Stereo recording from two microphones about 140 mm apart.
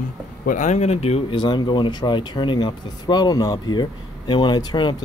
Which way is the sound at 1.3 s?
30° left (ahead or behind).